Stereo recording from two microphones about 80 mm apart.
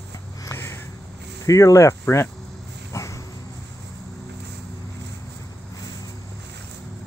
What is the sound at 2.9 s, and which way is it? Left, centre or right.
Dog, left.